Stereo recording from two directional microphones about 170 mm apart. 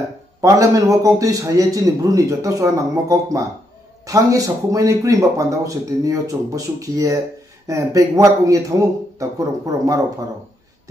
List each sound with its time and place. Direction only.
0.4 s a man's voice: 20° right (ahead or behind)